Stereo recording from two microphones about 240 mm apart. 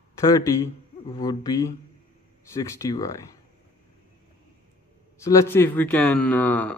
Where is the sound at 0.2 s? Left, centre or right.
Centre.